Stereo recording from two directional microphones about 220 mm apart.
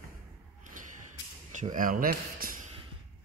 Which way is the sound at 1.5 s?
35° right (ahead or behind).